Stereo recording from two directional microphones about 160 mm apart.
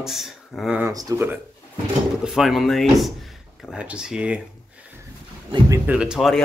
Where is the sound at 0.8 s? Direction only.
20° right (ahead or behind).